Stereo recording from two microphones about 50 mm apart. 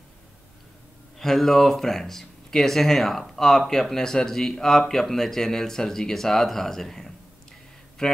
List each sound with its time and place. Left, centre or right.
1.1 s speech: centre